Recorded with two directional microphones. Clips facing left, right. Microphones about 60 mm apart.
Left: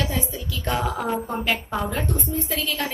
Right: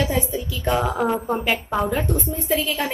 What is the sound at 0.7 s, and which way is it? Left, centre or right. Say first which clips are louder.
Speech: right 4 dB; right.